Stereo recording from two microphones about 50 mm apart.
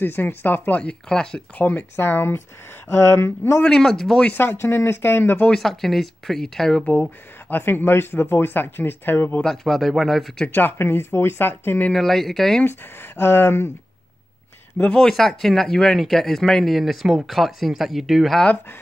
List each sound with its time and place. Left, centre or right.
0.0 s speech: left
0.7 s speech: centre
1.6 s speech: left
2.0 s speech: left
3.6 s speech: centre
4.3 s speech: left
5.5 s speech: centre
6.9 s speech: left
9.4 s speech: centre
9.8 s speech: centre
10.5 s speech: left
11.9 s speech: centre
12.6 s speech: left
14.9 s speech: centre